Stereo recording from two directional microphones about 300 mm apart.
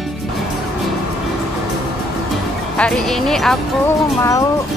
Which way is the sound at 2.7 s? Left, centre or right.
Centre.